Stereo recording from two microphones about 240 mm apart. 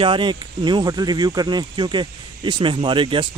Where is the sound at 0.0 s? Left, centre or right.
Right.